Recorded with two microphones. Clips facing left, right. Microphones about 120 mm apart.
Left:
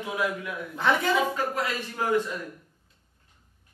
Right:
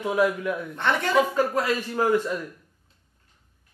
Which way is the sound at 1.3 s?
40° right (ahead or behind).